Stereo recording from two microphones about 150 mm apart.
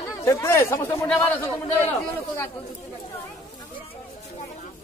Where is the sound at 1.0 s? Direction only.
10° left (ahead or behind).